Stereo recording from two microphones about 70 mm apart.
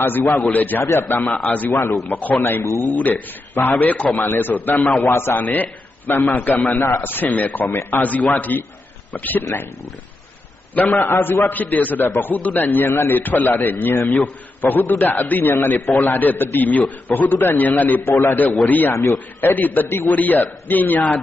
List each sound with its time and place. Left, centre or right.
0.0 s a man's voice: left
2.4 s speech: left
2.9 s a man's voice: left
4.2 s a man's voice: left
9.4 s speech: left
10.7 s a man's voice: left